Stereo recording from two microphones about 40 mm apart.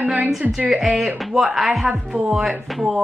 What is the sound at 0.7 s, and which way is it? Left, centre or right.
Speech, centre.